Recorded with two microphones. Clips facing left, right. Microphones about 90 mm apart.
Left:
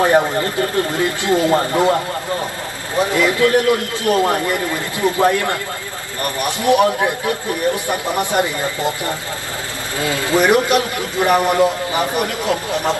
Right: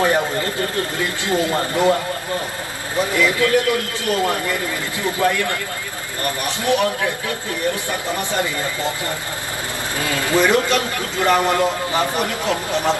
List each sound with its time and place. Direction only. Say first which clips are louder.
0.0 s a sound: left 4 dB; 20° left (ahead or behind)
1.2 s speech: left 4 dB; 20° left (ahead or behind)
3.2 s a man's voice: left 2 dB; 25° left (ahead or behind)